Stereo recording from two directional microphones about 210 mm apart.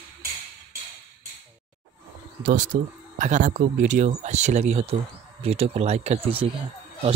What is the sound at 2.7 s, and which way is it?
Speech, 45° right (ahead or behind).